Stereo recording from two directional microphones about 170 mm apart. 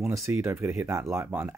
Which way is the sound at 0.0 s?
15° right (ahead or behind).